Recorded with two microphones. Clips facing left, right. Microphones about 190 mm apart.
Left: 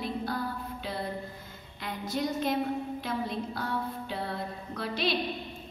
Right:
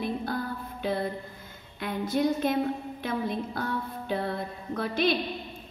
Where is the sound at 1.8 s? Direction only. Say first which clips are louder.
Right 5 dB; 55° right (ahead or behind).